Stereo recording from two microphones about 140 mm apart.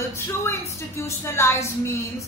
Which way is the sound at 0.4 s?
20° left (ahead or behind).